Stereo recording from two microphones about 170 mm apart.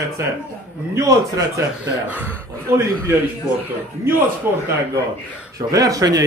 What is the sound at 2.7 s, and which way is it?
Speech, 15° right (ahead or behind).